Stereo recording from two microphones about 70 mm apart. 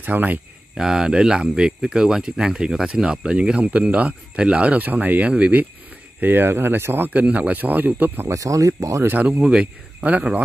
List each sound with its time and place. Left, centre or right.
0.0 s speech: right
0.7 s speech: centre; by 8.3 s right
8.3 s speech: right
9.0 s speech: right
9.4 s speech: centre